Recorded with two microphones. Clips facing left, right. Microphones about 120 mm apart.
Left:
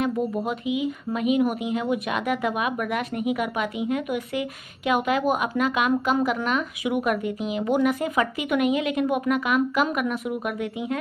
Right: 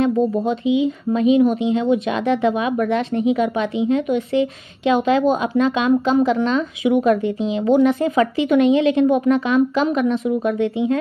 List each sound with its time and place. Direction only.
0.0 s speech: 25° right (ahead or behind)